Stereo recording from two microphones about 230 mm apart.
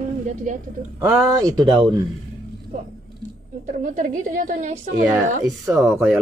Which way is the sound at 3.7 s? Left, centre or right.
Right.